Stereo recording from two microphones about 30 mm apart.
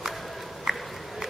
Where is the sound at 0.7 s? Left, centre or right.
Centre.